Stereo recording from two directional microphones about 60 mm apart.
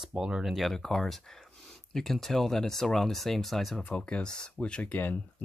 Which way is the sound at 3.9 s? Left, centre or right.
Centre.